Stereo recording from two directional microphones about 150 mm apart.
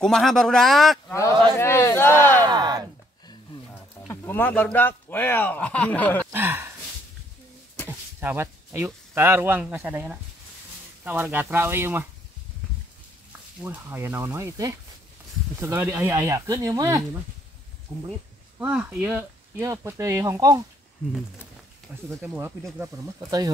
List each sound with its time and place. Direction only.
0.0 s speech: centre (ahead or behind)
1.6 s speech: 15° left (ahead or behind)
2.4 s a sound: 30° right (ahead or behind)
4.1 s speech: 15° left (ahead or behind)
6.3 s speech: 15° right (ahead or behind)
8.2 s speech: 15° right (ahead or behind)
13.6 s speech: 10° right (ahead or behind)
18.6 s speech: 10° right (ahead or behind)
22.2 s speech: 15° right (ahead or behind)
23.1 s speech: 25° right (ahead or behind)